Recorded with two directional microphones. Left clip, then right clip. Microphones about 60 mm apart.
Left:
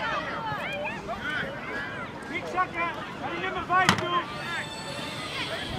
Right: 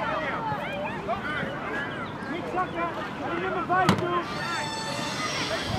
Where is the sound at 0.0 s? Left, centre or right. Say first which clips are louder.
Right 2 dB; left.